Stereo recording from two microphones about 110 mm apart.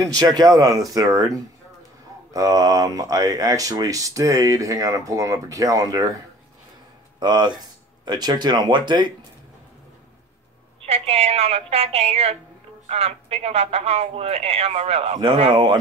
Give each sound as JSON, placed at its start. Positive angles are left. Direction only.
{"t": 0.2, "sound": "speech", "side_deg": -35}
{"t": 2.3, "sound": "speech", "side_deg": -35}
{"t": 7.2, "sound": "speech", "side_deg": -40}
{"t": 10.9, "sound": "speech", "side_deg": -70}
{"t": 15.5, "sound": "speech", "side_deg": -40}